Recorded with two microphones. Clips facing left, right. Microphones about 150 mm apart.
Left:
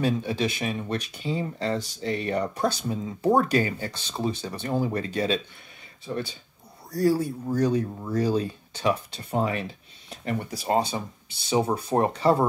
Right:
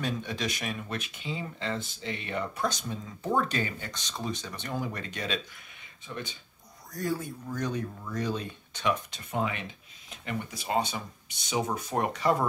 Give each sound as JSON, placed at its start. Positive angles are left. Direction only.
{"t": 0.0, "sound": "speech", "side_deg": 30}